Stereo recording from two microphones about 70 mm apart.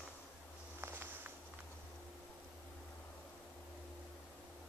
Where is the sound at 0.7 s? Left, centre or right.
Right.